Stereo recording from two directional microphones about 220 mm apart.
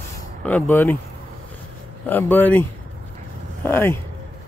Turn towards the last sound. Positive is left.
turn(degrees=10)  # may be behind; listen again after turning